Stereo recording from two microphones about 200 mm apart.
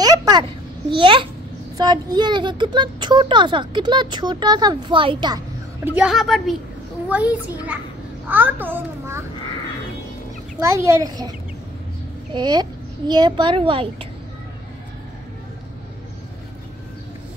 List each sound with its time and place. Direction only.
0.0 s a sound: 20° right (ahead or behind)
0.9 s speech: 25° right (ahead or behind)
5.9 s a woman's voice: 5° right (ahead or behind)
10.6 s a child's voice: 15° right (ahead or behind)